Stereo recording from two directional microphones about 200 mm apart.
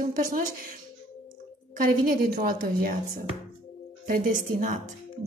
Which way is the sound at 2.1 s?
45° right (ahead or behind).